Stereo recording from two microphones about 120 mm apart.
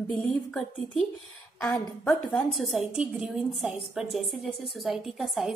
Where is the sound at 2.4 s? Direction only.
Centre (ahead or behind).